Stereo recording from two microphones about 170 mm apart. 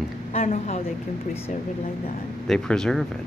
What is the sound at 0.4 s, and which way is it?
Speech, 45° left (ahead or behind).